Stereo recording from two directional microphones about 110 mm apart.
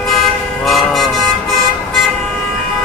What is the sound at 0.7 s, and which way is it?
Vehicle, centre (ahead or behind).